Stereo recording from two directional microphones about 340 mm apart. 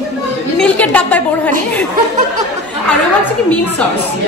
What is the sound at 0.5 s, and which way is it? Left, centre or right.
Speech, centre.